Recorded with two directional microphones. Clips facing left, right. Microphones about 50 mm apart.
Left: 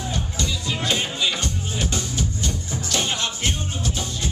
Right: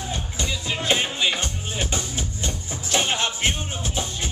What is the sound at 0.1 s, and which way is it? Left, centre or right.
Music, right.